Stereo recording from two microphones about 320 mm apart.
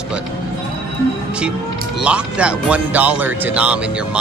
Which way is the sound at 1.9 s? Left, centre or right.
Centre.